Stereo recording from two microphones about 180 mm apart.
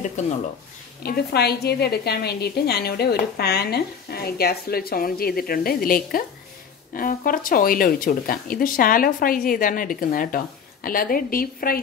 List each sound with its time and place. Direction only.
1.0 s a woman's voice: 60° left (ahead or behind)